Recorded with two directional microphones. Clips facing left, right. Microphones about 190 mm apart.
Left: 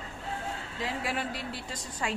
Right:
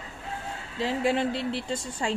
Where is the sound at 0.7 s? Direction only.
30° right (ahead or behind).